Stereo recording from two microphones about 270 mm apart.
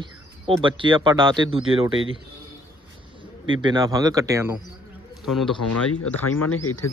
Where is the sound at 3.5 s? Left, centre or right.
Centre.